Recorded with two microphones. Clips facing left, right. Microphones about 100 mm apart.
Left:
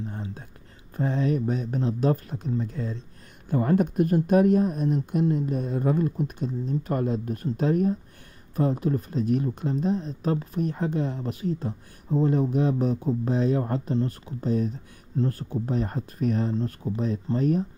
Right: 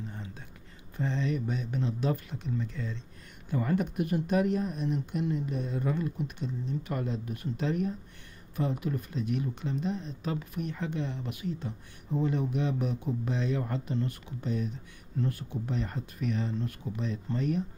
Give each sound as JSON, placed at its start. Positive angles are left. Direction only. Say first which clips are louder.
{"t": 0.1, "sound": "whispering", "louder": "left 7 dB", "side_deg": 40}
{"t": 0.9, "sound": "speech", "louder": "left 6 dB", "side_deg": 50}